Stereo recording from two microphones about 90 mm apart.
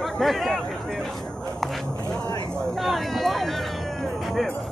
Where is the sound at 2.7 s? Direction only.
Centre (ahead or behind).